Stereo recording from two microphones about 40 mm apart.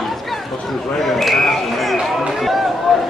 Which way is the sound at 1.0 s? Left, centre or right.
Centre.